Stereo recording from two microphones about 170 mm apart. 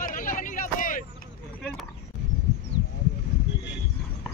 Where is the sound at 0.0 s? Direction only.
50° left (ahead or behind).